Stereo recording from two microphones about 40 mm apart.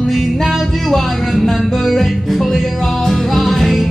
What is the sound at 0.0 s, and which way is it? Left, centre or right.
Music, centre.